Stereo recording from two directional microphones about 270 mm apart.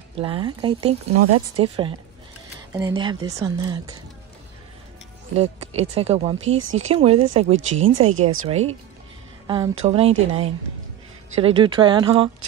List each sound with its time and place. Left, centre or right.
0.2 s a woman's voice: centre
5.3 s speech: right
8.1 s speech: right
8.5 s a woman's voice: right